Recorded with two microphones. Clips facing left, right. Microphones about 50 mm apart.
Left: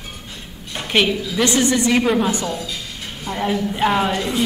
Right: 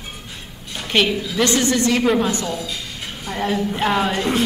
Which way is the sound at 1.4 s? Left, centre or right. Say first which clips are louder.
Left 1 dB; centre.